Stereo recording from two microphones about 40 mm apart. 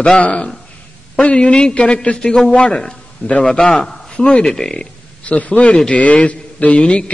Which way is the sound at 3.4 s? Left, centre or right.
Centre.